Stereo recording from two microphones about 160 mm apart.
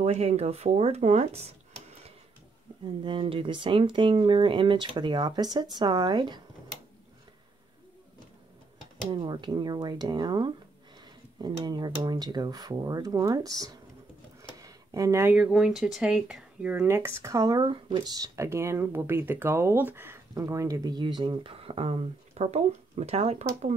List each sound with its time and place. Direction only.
0.0 s speech: 40° right (ahead or behind)
2.8 s speech: 30° right (ahead or behind)
9.1 s speech: 30° right (ahead or behind)
11.6 s speech: 25° right (ahead or behind); by 23.7 s 40° right (ahead or behind)